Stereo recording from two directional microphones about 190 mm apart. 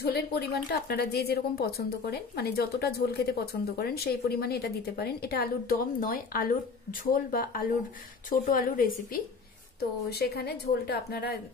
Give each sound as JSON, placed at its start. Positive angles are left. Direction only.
{"t": 0.0, "sound": "a woman's voice", "side_deg": 55}